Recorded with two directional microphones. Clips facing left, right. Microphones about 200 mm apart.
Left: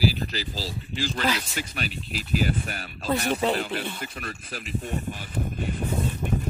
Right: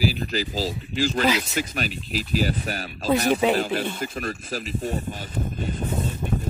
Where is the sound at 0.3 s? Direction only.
45° right (ahead or behind).